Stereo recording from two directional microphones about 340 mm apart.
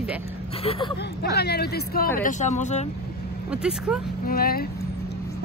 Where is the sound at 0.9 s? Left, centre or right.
Left.